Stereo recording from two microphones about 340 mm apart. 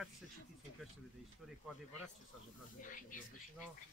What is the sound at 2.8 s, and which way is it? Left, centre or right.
Speech, left.